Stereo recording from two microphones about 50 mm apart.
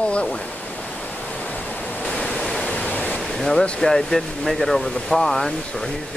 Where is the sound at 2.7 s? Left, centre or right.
Left.